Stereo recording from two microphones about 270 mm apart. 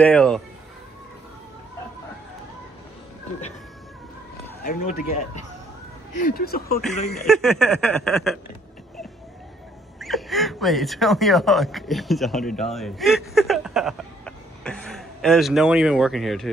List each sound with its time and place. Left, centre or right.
0.0 s speech: centre
4.6 s speech: left
6.2 s speech: left
7.1 s speech: centre
9.9 s speech: centre